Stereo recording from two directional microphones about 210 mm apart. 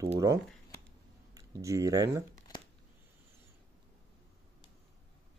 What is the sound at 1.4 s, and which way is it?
Speech, 15° right (ahead or behind).